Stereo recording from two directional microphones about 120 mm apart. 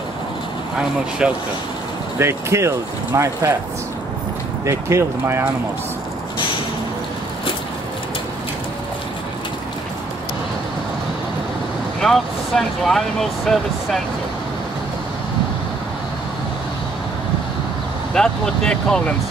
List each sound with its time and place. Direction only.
1.2 s speech: 10° right (ahead or behind)
2.1 s speech: 20° right (ahead or behind)
4.6 s speech: 25° right (ahead or behind)
12.0 s speech: centre (ahead or behind)
18.1 s speech: 5° left (ahead or behind)